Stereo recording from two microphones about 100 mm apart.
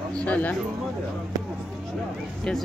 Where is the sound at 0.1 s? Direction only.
10° left (ahead or behind).